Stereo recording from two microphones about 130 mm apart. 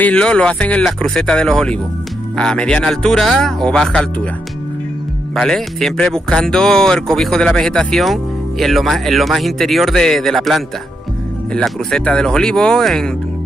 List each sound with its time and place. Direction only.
0.0 s speech: 10° left (ahead or behind)
5.3 s speech: 5° left (ahead or behind)